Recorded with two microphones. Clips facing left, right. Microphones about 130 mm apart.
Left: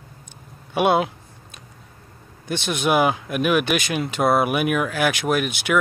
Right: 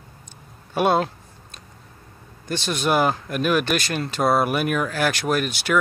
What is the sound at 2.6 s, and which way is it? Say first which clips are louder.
Speech: left 1 dB; 10° left (ahead or behind).